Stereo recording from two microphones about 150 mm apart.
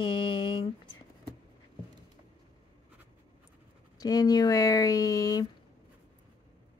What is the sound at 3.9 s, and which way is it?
Speech, 25° left (ahead or behind).